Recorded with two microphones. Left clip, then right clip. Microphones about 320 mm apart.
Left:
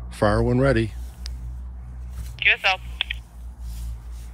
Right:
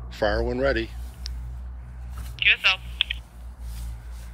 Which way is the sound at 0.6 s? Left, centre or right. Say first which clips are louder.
Left 3 dB; left.